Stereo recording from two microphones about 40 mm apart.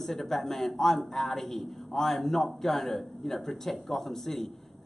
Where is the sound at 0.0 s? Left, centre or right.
Centre.